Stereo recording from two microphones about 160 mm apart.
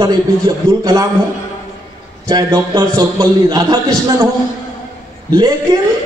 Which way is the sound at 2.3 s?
20° right (ahead or behind).